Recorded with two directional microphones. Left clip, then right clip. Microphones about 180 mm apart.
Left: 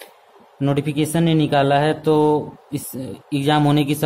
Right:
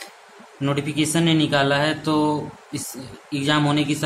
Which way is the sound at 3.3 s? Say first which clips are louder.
Left 3 dB; 55° left (ahead or behind).